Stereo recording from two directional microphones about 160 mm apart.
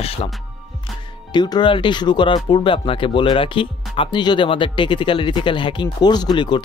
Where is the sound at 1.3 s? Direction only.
30° left (ahead or behind).